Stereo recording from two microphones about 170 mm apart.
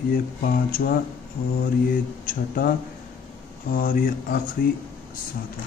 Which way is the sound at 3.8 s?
55° left (ahead or behind).